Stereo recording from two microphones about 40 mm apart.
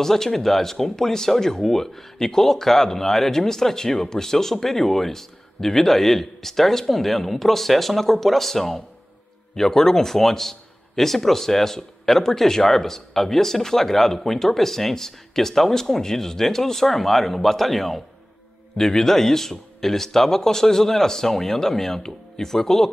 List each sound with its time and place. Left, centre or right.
0.0 s speech: centre